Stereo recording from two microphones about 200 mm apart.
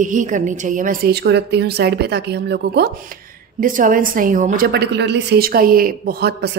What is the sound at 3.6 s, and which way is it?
A woman's voice, 40° right (ahead or behind).